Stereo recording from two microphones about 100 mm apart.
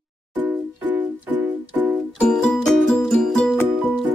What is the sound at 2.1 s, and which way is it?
Music, 5° left (ahead or behind).